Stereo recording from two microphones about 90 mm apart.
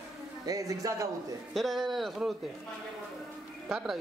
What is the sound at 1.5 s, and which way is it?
Speech, centre (ahead or behind).